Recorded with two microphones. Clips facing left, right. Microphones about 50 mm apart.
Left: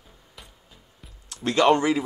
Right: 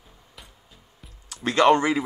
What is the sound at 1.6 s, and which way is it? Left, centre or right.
Speech, centre.